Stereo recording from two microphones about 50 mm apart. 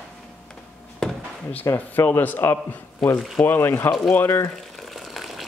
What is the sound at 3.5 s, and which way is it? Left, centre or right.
Speech, left.